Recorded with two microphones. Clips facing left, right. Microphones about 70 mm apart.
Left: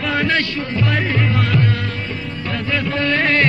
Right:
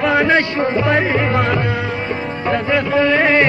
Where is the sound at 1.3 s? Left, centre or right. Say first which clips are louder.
Right 3 dB; centre.